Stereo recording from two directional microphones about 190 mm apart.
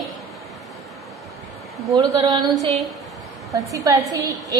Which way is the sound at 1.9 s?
25° right (ahead or behind).